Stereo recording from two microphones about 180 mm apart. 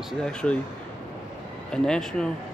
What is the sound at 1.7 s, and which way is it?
Speech, 5° left (ahead or behind).